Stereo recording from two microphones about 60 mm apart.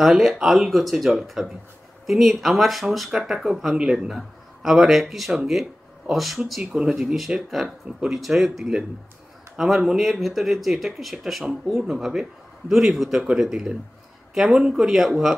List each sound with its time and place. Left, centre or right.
0.0 s speech: centre
3.7 s a man's voice: centre
6.6 s a man's voice: centre
6.9 s a man's voice: centre